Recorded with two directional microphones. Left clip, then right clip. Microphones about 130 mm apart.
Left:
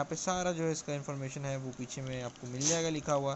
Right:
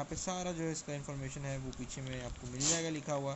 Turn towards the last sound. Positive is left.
turn(degrees=30)  # may be behind; listen again after turning